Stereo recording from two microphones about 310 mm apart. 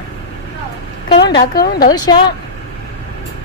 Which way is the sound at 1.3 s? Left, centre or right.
Left.